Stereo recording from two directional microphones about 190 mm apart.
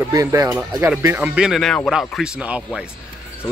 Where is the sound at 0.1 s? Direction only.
15° right (ahead or behind).